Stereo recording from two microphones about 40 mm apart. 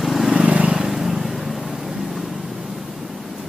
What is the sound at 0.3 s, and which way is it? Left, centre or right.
Vehicle, right.